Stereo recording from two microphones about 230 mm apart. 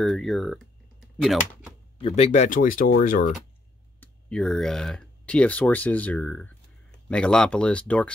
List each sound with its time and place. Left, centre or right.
0.0 s speech: centre
2.0 s speech: left
4.0 s speech: centre